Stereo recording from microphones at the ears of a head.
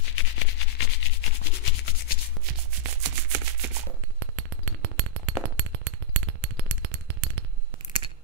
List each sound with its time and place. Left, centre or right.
0.0 s rub: left
2.4 s rub: right